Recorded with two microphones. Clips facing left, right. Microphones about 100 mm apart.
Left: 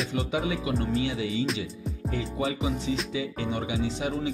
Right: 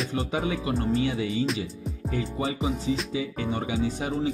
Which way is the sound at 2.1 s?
35° right (ahead or behind).